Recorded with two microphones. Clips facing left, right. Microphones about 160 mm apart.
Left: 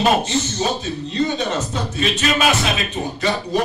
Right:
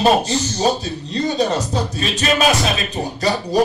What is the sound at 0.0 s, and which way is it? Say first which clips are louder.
Speech: right 2 dB; 35° right (ahead or behind).